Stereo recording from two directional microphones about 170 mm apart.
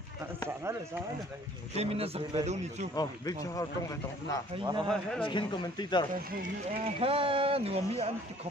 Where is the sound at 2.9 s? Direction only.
20° left (ahead or behind).